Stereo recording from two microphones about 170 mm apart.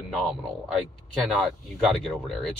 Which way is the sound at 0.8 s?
Centre (ahead or behind).